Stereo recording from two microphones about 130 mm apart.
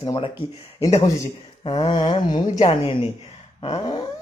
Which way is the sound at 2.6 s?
50° left (ahead or behind).